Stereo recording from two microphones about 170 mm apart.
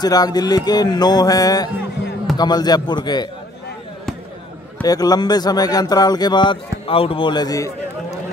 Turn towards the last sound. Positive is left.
turn(degrees=20)  # may be behind; listen again after turning